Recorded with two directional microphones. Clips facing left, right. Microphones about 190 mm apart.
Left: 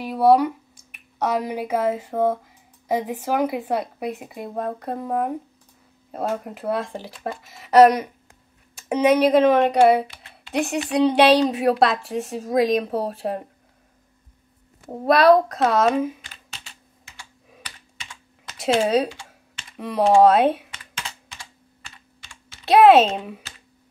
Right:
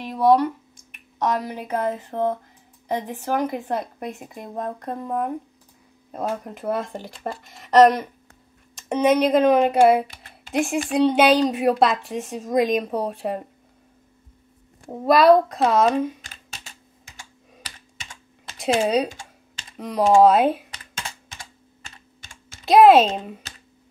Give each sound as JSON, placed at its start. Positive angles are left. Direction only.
{"t": 0.0, "sound": "a woman's voice", "side_deg": 10}
{"t": 6.4, "sound": "a woman's voice", "side_deg": 5}
{"t": 10.0, "sound": "a sound", "side_deg": -45}
{"t": 11.0, "sound": "a woman's voice", "side_deg": 0}
{"t": 15.0, "sound": "a woman's voice", "side_deg": 0}
{"t": 16.2, "sound": "computer keyboard", "side_deg": -45}
{"t": 18.6, "sound": "a woman's voice", "side_deg": 0}
{"t": 19.0, "sound": "typing", "side_deg": -45}
{"t": 19.8, "sound": "a woman's voice", "side_deg": 0}
{"t": 21.3, "sound": "computer keyboard", "side_deg": -45}
{"t": 22.7, "sound": "a woman's voice", "side_deg": 0}